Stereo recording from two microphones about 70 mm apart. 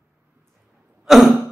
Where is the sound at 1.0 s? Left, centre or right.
Centre.